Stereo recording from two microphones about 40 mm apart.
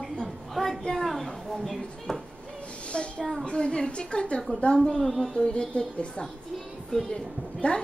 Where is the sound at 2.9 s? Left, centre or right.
Left.